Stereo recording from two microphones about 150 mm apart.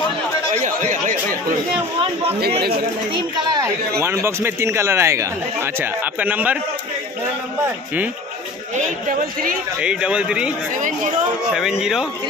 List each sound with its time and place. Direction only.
0.6 s chatter: 55° right (ahead or behind)
3.2 s speech: 25° right (ahead or behind); by 6.6 s 10° right (ahead or behind)
8.7 s a man's voice: 65° right (ahead or behind)
9.8 s speech: 5° right (ahead or behind)
11.5 s speech: 5° right (ahead or behind)